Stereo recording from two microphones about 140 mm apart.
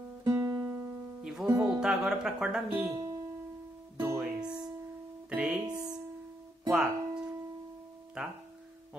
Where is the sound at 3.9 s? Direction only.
15° right (ahead or behind).